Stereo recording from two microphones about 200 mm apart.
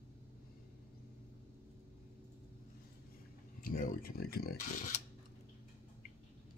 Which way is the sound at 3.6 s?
45° left (ahead or behind).